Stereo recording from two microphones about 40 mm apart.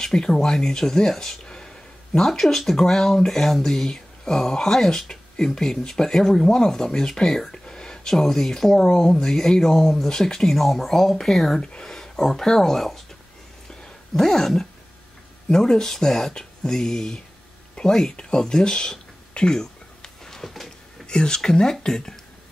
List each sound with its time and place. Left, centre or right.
0.0 s speech: centre
1.4 s a sound: left
2.1 s speech: centre
14.1 s speech: centre
18.1 s a sound: centre
21.1 s speech: centre